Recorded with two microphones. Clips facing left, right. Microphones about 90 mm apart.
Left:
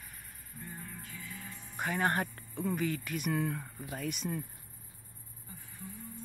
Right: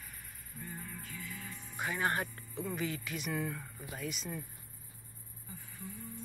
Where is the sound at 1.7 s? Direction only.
40° left (ahead or behind).